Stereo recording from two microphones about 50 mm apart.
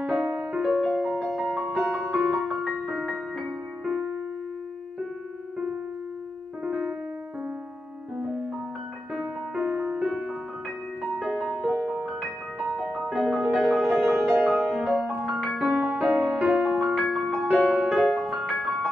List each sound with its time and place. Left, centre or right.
0.0 s music: centre
2.2 s music: centre
6.6 s piano: centre
8.2 s music: right
9.1 s music: centre
11.0 s music: centre
16.7 s music: centre